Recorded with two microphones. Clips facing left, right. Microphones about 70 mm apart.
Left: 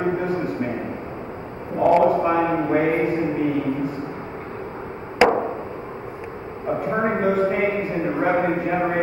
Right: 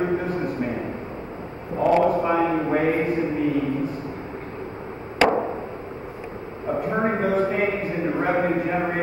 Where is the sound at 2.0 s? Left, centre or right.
Centre.